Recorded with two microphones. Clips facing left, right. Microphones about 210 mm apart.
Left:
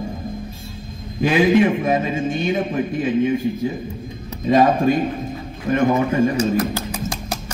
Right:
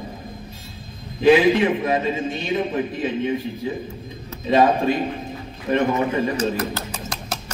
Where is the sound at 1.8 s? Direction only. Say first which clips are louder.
Left 2 dB; 45° left (ahead or behind).